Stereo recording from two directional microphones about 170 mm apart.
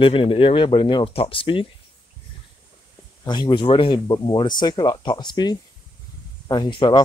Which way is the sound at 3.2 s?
25° left (ahead or behind).